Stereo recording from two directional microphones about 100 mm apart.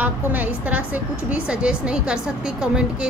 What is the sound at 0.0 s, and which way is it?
A woman's voice, 15° right (ahead or behind).